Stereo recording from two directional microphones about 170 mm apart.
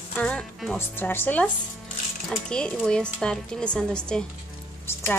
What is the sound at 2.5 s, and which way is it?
Speech, 5° left (ahead or behind).